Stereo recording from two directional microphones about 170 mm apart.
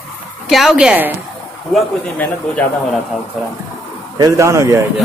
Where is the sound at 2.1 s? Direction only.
5° left (ahead or behind).